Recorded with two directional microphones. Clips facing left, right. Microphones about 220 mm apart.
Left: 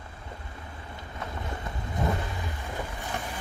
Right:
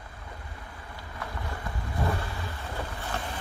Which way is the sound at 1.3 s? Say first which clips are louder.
Left 1 dB; 20° left (ahead or behind).